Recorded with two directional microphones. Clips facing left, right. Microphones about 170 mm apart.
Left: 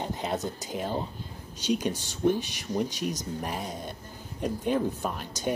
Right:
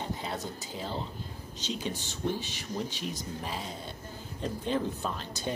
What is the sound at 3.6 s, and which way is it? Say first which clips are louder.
Speech: left 4 dB; 15° left (ahead or behind).